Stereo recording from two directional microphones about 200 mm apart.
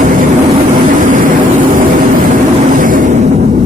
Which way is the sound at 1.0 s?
40° right (ahead or behind).